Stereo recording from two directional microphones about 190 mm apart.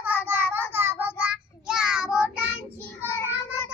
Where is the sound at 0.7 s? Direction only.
10° right (ahead or behind).